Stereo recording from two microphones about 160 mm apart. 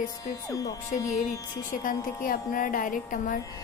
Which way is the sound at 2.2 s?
60° left (ahead or behind).